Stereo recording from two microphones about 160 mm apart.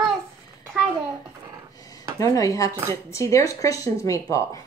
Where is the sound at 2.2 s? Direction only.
20° left (ahead or behind).